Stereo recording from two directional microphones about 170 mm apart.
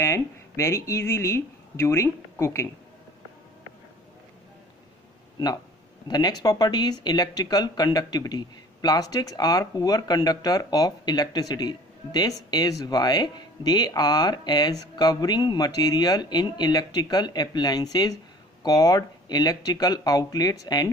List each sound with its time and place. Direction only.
0.0 s speech: 15° left (ahead or behind)
6.0 s speech: 25° left (ahead or behind)